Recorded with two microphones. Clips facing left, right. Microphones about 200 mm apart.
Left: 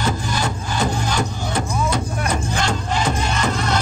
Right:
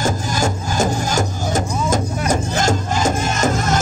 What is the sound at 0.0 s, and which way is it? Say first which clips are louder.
Music: right 3 dB; 45° right (ahead or behind).